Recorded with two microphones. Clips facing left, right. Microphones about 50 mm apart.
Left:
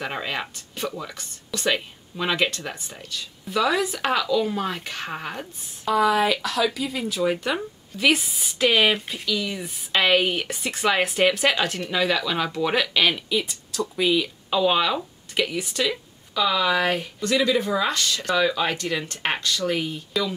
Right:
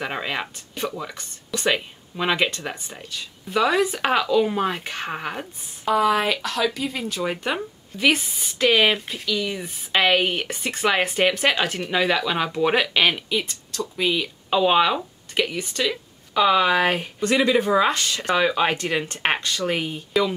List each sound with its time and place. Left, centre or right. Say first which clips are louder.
0.0 s speech: right 1 dB; centre
13.5 s speech: left 2 dB; centre
14.5 s speech: right 3 dB; centre
16.3 s speech: right 4 dB; right